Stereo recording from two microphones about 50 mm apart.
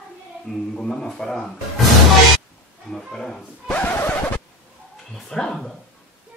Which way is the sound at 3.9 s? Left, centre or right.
Left.